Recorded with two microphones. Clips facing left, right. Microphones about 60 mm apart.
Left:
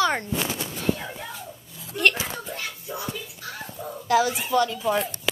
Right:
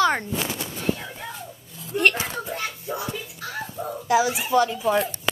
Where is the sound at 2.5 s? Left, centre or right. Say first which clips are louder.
Right 4 dB; right.